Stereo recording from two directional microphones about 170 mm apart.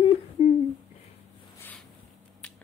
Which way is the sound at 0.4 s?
30° left (ahead or behind).